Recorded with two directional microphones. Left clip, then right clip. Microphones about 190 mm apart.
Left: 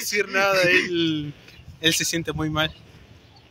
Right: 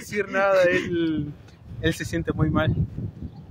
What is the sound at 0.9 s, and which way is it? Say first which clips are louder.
A man's voice: left 1 dB; 15° right (ahead or behind).